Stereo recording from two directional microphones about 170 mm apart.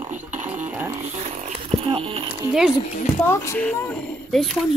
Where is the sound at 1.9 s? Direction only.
30° right (ahead or behind).